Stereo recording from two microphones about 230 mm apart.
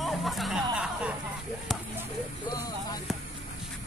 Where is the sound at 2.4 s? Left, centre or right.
Centre.